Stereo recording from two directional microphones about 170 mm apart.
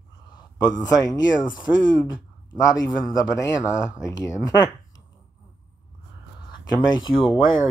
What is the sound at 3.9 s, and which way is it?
Speech, 20° left (ahead or behind).